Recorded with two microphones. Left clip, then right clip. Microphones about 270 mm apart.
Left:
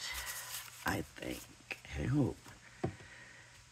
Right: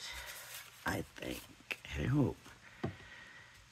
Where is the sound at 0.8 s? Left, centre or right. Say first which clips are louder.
Left 1 dB; centre.